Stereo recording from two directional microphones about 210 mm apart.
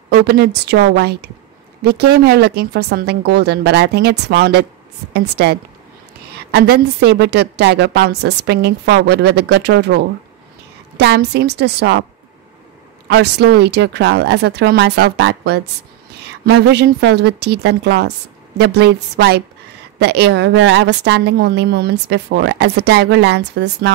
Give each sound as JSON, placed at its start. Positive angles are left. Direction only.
{"t": 0.1, "sound": "a woman's voice", "side_deg": -50}
{"t": 11.0, "sound": "a woman's voice", "side_deg": -50}
{"t": 13.1, "sound": "a woman's voice", "side_deg": -55}